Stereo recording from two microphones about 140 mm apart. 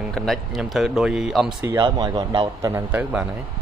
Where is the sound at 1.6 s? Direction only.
25° right (ahead or behind).